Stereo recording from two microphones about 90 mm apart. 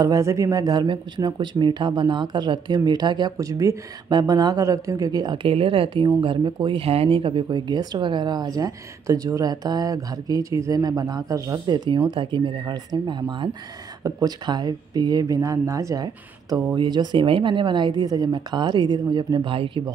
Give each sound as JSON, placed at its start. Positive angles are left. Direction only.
{"t": 0.0, "sound": "speech", "side_deg": -35}
{"t": 3.3, "sound": "speech", "side_deg": -40}
{"t": 4.1, "sound": "speech", "side_deg": -50}
{"t": 7.4, "sound": "speech", "side_deg": -55}
{"t": 11.6, "sound": "speech", "side_deg": -55}
{"t": 12.1, "sound": "speech", "side_deg": -65}